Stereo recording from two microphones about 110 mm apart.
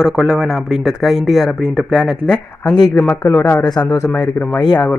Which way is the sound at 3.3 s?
20° left (ahead or behind).